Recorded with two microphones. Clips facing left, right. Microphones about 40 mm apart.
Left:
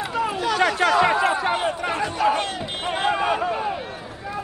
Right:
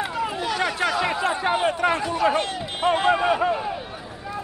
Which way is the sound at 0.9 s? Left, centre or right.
Centre.